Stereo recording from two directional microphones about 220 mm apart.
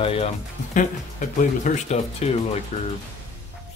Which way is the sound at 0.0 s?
25° left (ahead or behind).